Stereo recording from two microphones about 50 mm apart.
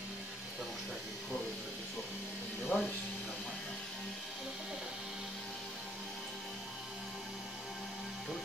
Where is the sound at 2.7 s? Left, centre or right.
Left.